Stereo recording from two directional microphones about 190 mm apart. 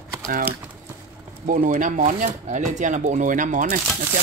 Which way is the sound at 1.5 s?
45° right (ahead or behind).